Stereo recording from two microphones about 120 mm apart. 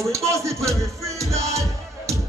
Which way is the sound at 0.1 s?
25° right (ahead or behind).